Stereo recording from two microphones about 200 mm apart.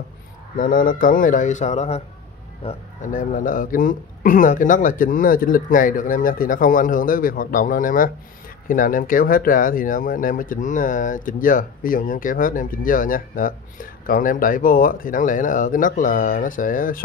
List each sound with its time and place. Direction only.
0.6 s a man's voice: 45° left (ahead or behind)